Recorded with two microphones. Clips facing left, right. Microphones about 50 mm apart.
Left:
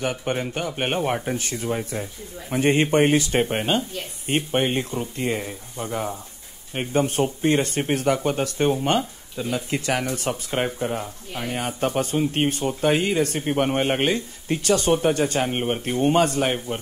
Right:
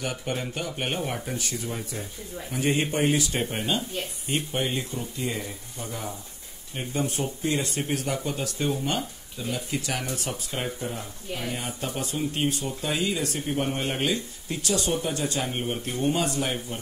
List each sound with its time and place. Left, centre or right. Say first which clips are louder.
0.0 s speech: left 5 dB; left